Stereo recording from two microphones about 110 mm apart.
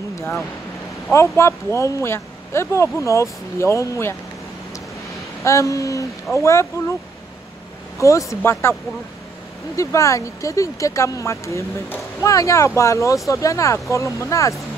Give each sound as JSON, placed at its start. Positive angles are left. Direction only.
{"t": 0.1, "sound": "a sound", "side_deg": 25}
{"t": 1.1, "sound": "speech", "side_deg": 25}
{"t": 5.4, "sound": "speech", "side_deg": 30}
{"t": 8.0, "sound": "speech", "side_deg": 30}
{"t": 9.8, "sound": "speech", "side_deg": 30}